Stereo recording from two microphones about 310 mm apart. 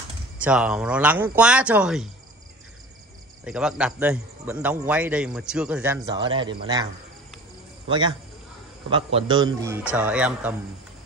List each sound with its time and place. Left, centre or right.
0.4 s a man's voice: centre
3.4 s a man's voice: centre
8.9 s a man's voice: centre